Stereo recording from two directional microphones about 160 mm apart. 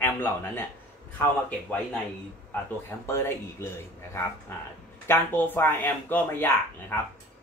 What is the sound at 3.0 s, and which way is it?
Speech, 15° left (ahead or behind).